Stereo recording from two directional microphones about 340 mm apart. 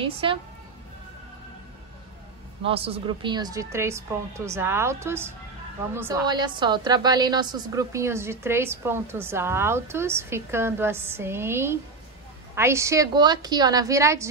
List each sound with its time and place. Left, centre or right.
0.0 s a woman's voice: centre
2.6 s a woman's voice: centre